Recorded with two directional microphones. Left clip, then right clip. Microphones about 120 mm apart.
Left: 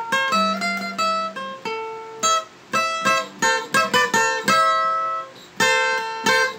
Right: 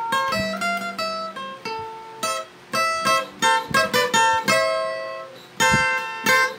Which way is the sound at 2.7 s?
15° left (ahead or behind).